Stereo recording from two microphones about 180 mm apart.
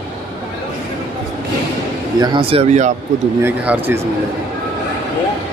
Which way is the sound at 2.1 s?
25° right (ahead or behind).